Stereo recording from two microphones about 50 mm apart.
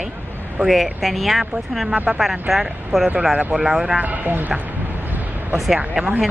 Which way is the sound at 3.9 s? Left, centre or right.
Right.